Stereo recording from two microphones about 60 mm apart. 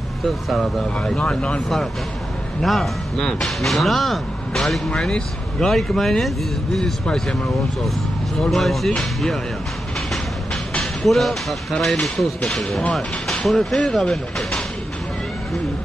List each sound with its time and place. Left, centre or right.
0.2 s speech: centre
0.9 s speech: centre
2.6 s speech: centre
5.7 s speech: centre
8.4 s speech: centre
10.8 s speech: centre